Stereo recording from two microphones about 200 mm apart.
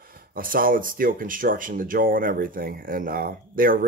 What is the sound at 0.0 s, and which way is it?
Speech, 45° right (ahead or behind).